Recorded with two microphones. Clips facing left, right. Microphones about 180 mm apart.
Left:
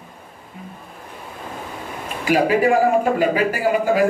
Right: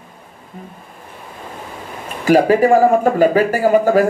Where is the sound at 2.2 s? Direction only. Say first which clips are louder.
Right 5 dB; 40° right (ahead or behind).